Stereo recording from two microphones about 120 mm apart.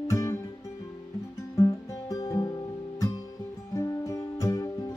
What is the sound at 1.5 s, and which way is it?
Music, 30° left (ahead or behind).